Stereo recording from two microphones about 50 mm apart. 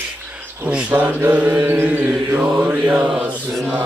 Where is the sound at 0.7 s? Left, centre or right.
Right.